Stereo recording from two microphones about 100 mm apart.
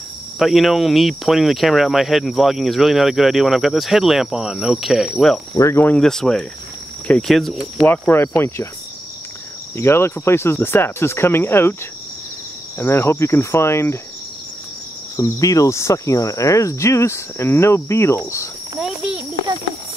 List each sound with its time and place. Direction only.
0.4 s speech: centre (ahead or behind)
5.5 s cricket: 30° left (ahead or behind)
5.9 s speech: 5° left (ahead or behind)
8.1 s cricket: 25° left (ahead or behind)
9.8 s cricket: 25° left (ahead or behind)
12.7 s cricket: 25° left (ahead or behind)
15.1 s cricket: 35° left (ahead or behind)
18.8 s a sound: 5° right (ahead or behind)